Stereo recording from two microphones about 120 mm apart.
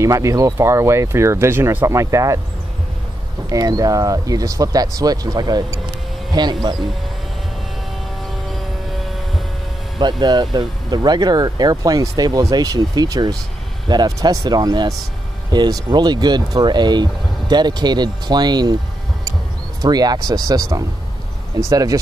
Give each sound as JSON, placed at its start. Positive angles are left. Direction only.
{"t": 0.0, "sound": "speech", "side_deg": -25}
{"t": 3.4, "sound": "speech", "side_deg": -30}
{"t": 9.9, "sound": "speech", "side_deg": -35}
{"t": 19.8, "sound": "speech", "side_deg": -35}
{"t": 21.6, "sound": "speech", "side_deg": -30}